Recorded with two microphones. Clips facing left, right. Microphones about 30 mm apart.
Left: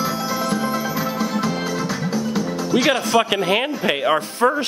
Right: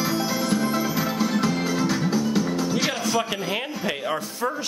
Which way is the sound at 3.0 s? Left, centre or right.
Left.